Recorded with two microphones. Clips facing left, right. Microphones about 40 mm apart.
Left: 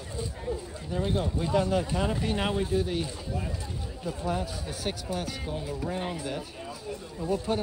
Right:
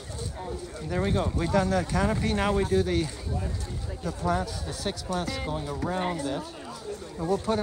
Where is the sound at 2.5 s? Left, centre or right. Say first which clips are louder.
Right 3 dB; right.